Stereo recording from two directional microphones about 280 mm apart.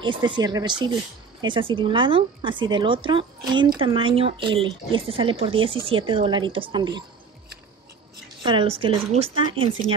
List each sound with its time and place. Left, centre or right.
0.0 s speech: centre
8.4 s speech: centre